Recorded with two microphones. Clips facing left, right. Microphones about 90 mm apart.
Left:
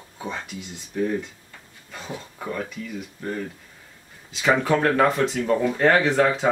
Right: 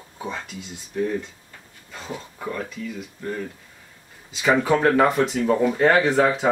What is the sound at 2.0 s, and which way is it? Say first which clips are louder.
Speech: right 1 dB; centre (ahead or behind).